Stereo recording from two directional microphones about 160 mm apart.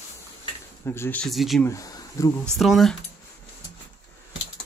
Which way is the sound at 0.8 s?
15° left (ahead or behind).